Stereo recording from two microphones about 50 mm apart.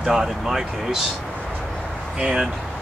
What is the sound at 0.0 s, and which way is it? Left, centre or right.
Speech, centre.